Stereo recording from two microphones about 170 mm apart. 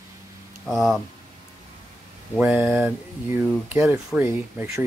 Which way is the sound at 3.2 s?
15° right (ahead or behind).